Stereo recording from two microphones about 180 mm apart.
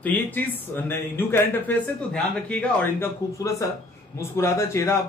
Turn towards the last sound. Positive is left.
turn(degrees=15)  # may be behind; listen again after turning